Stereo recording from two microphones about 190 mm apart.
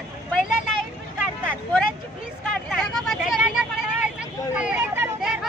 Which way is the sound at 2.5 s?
5° left (ahead or behind).